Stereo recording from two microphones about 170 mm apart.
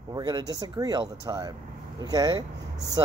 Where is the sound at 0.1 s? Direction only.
20° right (ahead or behind).